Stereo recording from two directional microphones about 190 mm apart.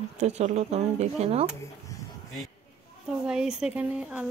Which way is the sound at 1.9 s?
15° left (ahead or behind).